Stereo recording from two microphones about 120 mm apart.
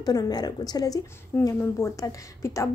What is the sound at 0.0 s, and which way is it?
A woman's voice, 30° left (ahead or behind).